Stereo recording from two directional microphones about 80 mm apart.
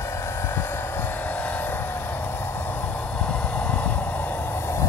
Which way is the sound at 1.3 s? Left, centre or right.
Left.